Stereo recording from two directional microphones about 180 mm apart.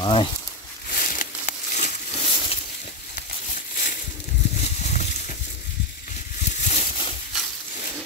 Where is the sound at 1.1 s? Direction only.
45° left (ahead or behind).